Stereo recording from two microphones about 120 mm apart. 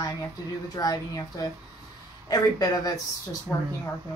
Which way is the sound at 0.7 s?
30° left (ahead or behind).